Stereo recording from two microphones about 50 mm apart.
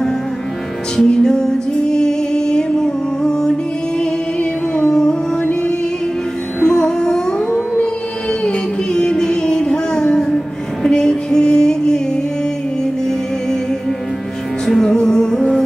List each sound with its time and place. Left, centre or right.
0.9 s music: centre
6.6 s music: centre
7.3 s music: left
14.7 s music: centre